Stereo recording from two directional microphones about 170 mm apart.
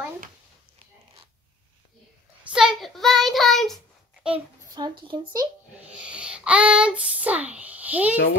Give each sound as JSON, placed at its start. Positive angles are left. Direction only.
{"t": 2.4, "sound": "child singing", "side_deg": -5}
{"t": 4.7, "sound": "a woman's voice", "side_deg": -25}
{"t": 5.9, "sound": "a sound", "side_deg": -5}